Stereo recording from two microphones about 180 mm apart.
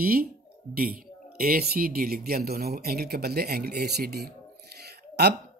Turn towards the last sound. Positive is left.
turn(degrees=-65)  # may be behind; listen again after turning